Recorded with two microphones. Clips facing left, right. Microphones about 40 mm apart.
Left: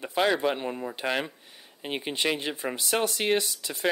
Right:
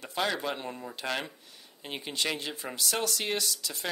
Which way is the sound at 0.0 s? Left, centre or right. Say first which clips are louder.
Left 6 dB; left.